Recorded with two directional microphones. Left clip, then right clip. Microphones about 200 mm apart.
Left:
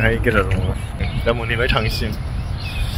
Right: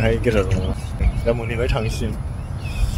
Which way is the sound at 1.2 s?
5° right (ahead or behind).